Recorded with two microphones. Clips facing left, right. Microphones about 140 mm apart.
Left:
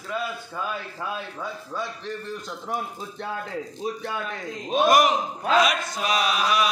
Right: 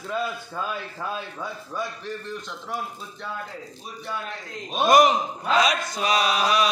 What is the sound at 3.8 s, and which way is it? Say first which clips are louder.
Speech: left 4 dB; 90° left.